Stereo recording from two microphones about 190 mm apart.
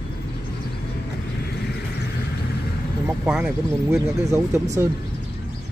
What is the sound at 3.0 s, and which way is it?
Speech, 5° right (ahead or behind).